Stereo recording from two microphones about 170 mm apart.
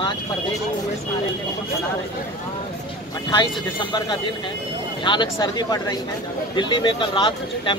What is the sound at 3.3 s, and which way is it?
Speech, 25° left (ahead or behind).